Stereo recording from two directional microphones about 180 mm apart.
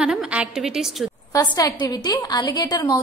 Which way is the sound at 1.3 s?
20° left (ahead or behind).